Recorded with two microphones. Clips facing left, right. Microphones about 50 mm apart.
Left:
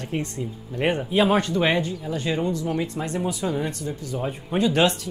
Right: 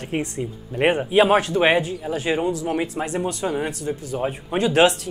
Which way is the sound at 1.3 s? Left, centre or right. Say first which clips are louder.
Right 4 dB; centre.